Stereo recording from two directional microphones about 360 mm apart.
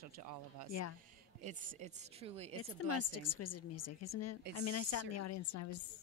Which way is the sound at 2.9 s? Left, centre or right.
Left.